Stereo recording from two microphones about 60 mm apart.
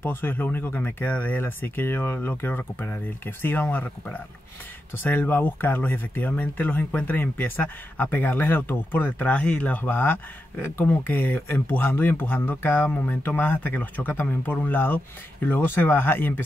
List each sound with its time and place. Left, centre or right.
0.0 s speech: left